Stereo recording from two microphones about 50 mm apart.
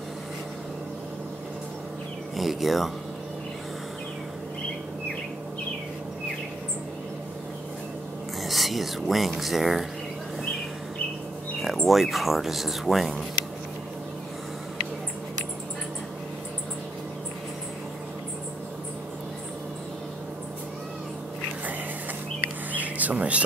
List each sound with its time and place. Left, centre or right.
2.3 s speech: centre
8.5 s speech: centre
11.6 s speech: centre
22.7 s a sound: right